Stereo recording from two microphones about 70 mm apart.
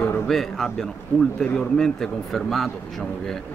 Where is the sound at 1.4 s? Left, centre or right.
Left.